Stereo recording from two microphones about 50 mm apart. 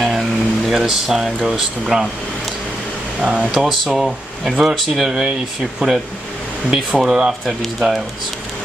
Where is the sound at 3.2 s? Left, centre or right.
Centre.